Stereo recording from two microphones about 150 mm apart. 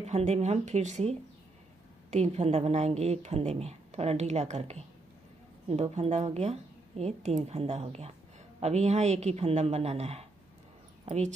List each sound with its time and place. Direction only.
0.0 s a woman's voice: 45° right (ahead or behind)